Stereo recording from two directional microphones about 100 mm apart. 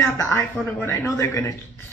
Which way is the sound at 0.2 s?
25° left (ahead or behind).